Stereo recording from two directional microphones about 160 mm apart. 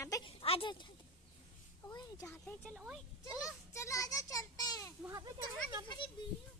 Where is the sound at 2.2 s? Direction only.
Centre (ahead or behind).